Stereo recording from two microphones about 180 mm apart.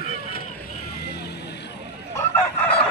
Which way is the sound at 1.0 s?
65° left (ahead or behind).